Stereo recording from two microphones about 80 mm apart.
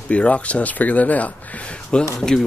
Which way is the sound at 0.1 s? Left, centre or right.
Centre.